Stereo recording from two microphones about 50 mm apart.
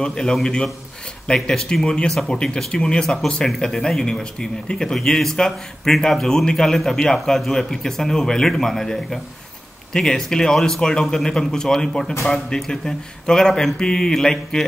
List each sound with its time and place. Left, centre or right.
0.0 s speech: centre